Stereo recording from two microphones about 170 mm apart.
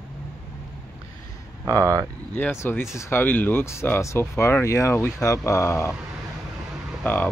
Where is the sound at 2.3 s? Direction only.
15° left (ahead or behind).